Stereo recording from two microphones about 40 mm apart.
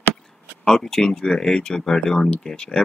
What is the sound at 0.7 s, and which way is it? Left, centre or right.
Speech, centre.